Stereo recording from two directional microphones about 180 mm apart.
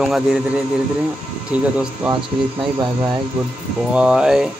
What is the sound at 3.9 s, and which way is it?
Speech, 5° right (ahead or behind).